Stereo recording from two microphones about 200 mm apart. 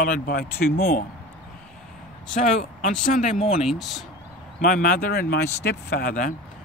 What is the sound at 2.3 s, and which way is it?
Speech, 40° left (ahead or behind).